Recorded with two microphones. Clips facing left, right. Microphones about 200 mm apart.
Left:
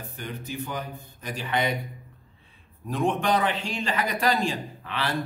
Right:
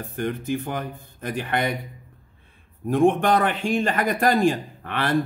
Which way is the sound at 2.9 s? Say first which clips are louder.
Right 6 dB; 50° right (ahead or behind).